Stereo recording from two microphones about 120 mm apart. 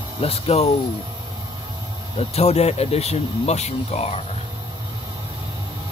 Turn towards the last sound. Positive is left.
turn(degrees=65)  # may be behind; listen again after turning